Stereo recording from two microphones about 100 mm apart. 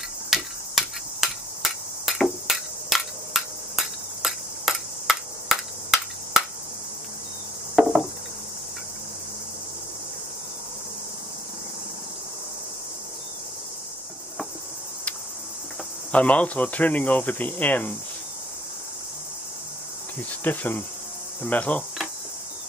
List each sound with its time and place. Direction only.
0.3 s a sound: 5° right (ahead or behind)
2.1 s hammer: centre (ahead or behind)
16.1 s speech: 15° left (ahead or behind)
20.4 s speech: 20° left (ahead or behind)